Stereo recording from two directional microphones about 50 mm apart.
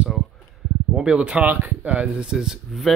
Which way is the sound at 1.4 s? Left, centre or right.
Right.